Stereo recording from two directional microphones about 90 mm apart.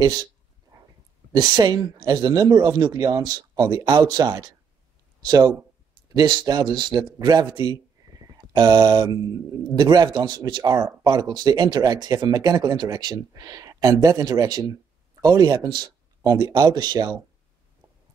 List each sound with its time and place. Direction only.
0.0 s speech: 50° right (ahead or behind)
1.3 s speech: 50° right (ahead or behind)